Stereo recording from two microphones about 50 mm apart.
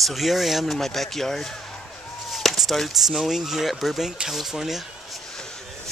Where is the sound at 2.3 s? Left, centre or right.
Centre.